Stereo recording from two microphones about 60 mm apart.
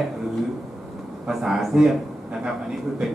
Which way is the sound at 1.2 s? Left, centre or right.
Centre.